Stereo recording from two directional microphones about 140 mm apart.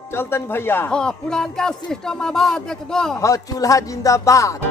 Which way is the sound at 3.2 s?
25° left (ahead or behind).